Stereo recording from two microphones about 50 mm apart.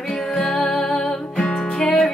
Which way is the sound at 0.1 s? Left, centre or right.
Centre.